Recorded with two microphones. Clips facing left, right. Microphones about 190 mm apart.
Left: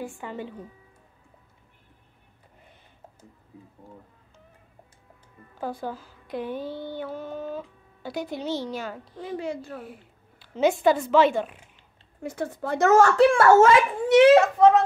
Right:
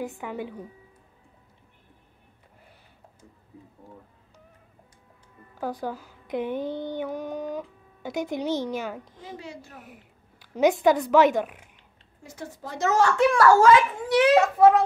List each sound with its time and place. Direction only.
0.0 s speech: 15° right (ahead or behind)
5.6 s speech: 15° right (ahead or behind)
9.2 s a woman's voice: 55° left (ahead or behind)
10.5 s speech: 15° right (ahead or behind)
12.2 s a woman's voice: 60° left (ahead or behind)
13.2 s a child's voice: 25° left (ahead or behind)
14.6 s speech: 5° right (ahead or behind)